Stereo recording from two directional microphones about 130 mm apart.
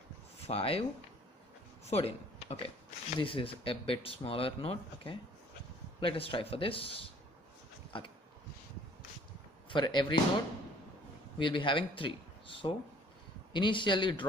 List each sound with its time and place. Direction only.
0.4 s speech: 50° left (ahead or behind)
1.9 s a man's voice: 50° left (ahead or behind)
9.7 s a man's voice: 35° left (ahead or behind)
11.3 s a man's voice: 40° left (ahead or behind)